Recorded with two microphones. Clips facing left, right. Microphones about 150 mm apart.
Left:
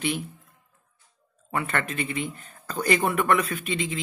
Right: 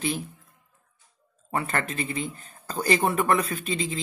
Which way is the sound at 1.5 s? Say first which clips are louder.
Even; 35° right (ahead or behind).